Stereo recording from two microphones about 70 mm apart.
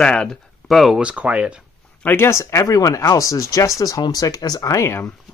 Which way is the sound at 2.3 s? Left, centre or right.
Left.